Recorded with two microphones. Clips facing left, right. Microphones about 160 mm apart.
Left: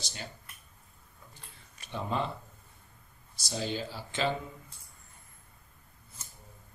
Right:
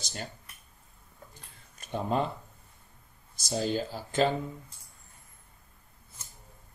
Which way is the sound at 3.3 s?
45° right (ahead or behind).